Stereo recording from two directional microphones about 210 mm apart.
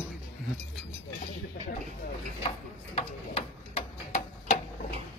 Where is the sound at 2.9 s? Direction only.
30° left (ahead or behind).